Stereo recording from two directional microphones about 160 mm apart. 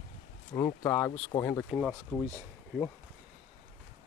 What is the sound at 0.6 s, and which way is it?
Speech, 15° left (ahead or behind).